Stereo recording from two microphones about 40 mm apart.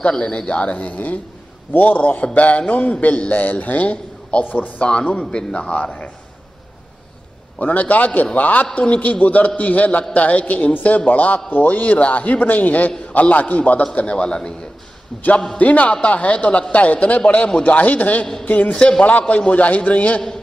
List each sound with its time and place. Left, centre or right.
0.2 s a man's voice: left
4.5 s a man's voice: left
5.3 s a man's voice: left
7.6 s a man's voice: left
14.0 s a man's voice: left
15.5 s a man's voice: left
18.8 s a man's voice: left
19.0 s a man's voice: left